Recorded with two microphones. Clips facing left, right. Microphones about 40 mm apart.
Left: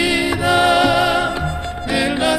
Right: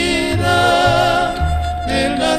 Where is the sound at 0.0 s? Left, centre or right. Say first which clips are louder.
Even; centre.